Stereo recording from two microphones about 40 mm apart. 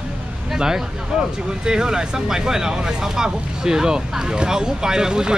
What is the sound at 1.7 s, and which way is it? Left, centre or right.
Speech, centre.